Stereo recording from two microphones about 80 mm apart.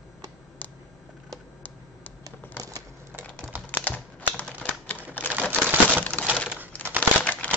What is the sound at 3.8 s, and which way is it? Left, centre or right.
Typing, centre.